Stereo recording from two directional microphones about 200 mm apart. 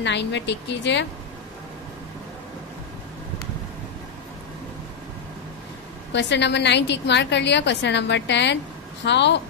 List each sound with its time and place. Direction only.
0.0 s a woman's voice: 60° left (ahead or behind)
6.1 s a woman's voice: 60° left (ahead or behind)